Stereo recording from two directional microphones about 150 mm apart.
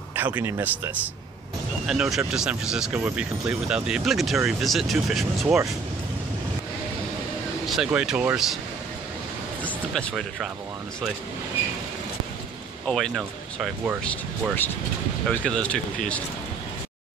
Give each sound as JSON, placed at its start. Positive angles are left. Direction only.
{"t": 0.1, "sound": "speech", "side_deg": -10}
{"t": 1.9, "sound": "speech", "side_deg": 0}
{"t": 7.6, "sound": "speech", "side_deg": -5}
{"t": 9.6, "sound": "music", "side_deg": 10}
{"t": 12.8, "sound": "speech", "side_deg": 5}
{"t": 15.2, "sound": "speech", "side_deg": 5}